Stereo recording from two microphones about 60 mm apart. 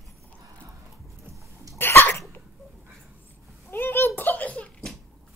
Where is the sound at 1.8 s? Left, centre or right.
Left.